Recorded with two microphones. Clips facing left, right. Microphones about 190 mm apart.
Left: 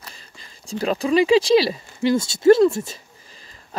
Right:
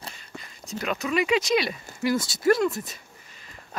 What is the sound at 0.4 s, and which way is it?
Speech, 30° left (ahead or behind).